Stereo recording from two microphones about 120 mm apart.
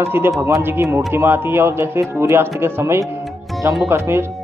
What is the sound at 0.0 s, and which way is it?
A man's voice, 20° right (ahead or behind).